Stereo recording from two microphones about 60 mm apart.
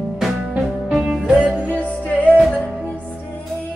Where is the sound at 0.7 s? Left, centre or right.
Centre.